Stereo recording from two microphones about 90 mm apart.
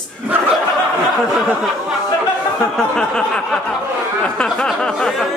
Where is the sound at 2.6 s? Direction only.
5° left (ahead or behind).